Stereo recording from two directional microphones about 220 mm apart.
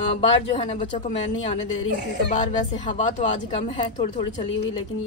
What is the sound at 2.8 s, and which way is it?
Speech, 35° left (ahead or behind).